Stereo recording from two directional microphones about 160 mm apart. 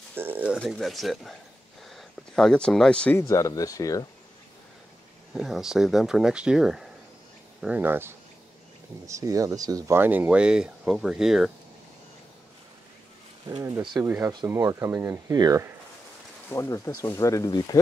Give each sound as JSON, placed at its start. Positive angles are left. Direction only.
{"t": 0.1, "sound": "speech", "side_deg": -15}
{"t": 0.6, "sound": "speech", "side_deg": 0}
{"t": 3.2, "sound": "speech", "side_deg": 20}
{"t": 5.3, "sound": "speech", "side_deg": 0}
{"t": 13.5, "sound": "speech", "side_deg": -20}
{"t": 16.4, "sound": "speech", "side_deg": 15}